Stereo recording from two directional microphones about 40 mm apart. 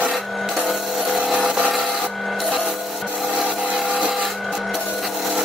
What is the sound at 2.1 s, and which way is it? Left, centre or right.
Rub, centre.